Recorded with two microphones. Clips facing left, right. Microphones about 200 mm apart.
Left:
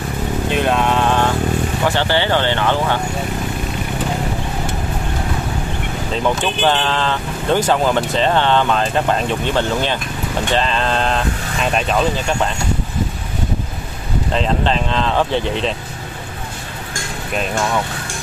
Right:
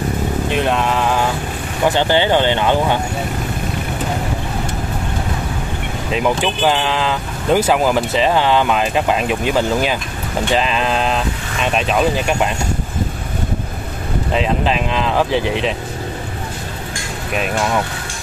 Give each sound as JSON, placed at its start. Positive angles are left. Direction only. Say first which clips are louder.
{"t": 0.5, "sound": "a sound", "louder": "left 2 dB", "side_deg": 0}
{"t": 1.9, "sound": "speech", "louder": "right 4 dB", "side_deg": -15}
{"t": 6.1, "sound": "speech", "louder": "right 2 dB", "side_deg": -10}
{"t": 12.0, "sound": "speech", "louder": "right 2 dB", "side_deg": -15}
{"t": 14.3, "sound": "speech", "louder": "right 1 dB", "side_deg": -5}